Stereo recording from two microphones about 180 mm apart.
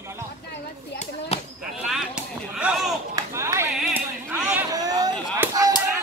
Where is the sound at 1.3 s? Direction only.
35° left (ahead or behind).